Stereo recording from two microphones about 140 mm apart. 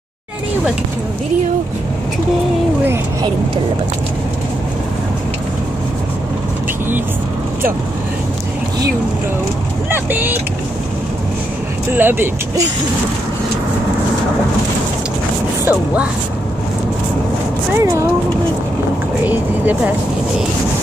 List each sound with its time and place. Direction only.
9.8 s speech: 15° right (ahead or behind)
11.9 s speech: 15° right (ahead or behind)
15.6 s speech: 10° right (ahead or behind)
17.7 s speech: 20° right (ahead or behind)
19.2 s speech: 10° right (ahead or behind)